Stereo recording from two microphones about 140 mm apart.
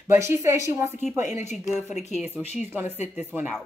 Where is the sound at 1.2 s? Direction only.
55° left (ahead or behind).